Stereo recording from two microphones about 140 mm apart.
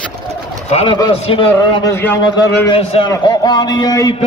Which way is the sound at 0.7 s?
45° left (ahead or behind).